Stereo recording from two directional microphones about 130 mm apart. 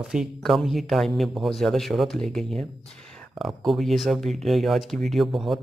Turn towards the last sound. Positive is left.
turn(degrees=0)  # may be behind; listen again after turning